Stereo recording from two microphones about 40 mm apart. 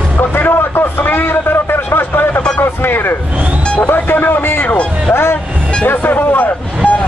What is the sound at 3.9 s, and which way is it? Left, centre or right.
Music, left.